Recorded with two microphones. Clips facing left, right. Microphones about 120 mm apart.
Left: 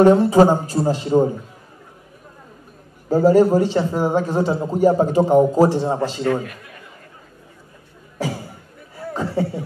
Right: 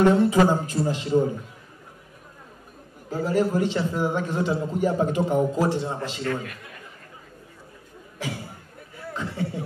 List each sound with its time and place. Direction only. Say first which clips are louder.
0.0 s a man's voice: left 6 dB; 35° left (ahead or behind)
3.1 s a man's voice: left 10 dB; 35° left (ahead or behind)
8.2 s speech: left 7 dB; 40° left (ahead or behind)
8.9 s a sound: left 9 dB; 40° left (ahead or behind)